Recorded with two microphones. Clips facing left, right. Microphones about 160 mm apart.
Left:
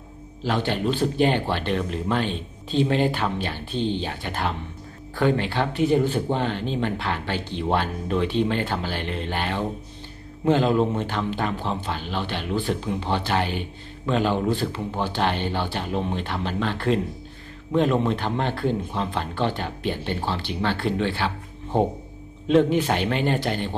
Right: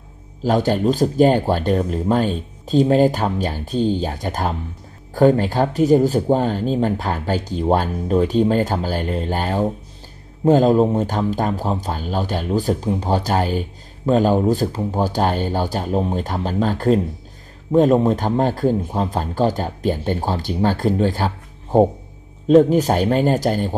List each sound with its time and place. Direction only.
0.4 s speech: 40° right (ahead or behind)
22.5 s speech: 40° right (ahead or behind)